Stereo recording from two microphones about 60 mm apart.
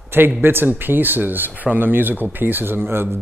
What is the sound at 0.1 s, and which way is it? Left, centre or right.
Speech, right.